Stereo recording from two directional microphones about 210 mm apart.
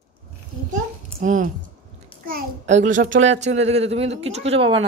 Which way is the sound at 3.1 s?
65° right (ahead or behind).